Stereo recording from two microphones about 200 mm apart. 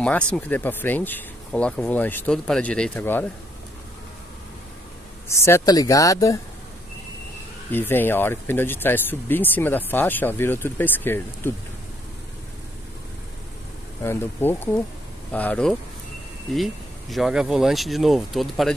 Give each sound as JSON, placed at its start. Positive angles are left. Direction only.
{"t": 0.3, "sound": "speech", "side_deg": 10}
{"t": 5.3, "sound": "speech", "side_deg": 15}
{"t": 7.7, "sound": "speech", "side_deg": 10}
{"t": 14.0, "sound": "speech", "side_deg": 10}